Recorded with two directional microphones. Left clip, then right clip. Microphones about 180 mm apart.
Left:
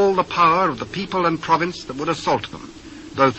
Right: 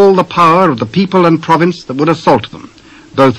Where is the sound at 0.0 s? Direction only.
35° right (ahead or behind).